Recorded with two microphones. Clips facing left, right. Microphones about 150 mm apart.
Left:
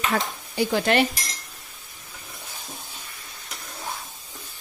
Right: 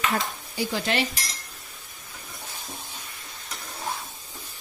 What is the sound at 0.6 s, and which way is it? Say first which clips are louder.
Speech: left 6 dB; 55° left (ahead or behind).